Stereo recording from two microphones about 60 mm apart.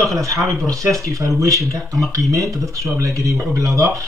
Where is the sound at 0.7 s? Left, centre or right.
Right.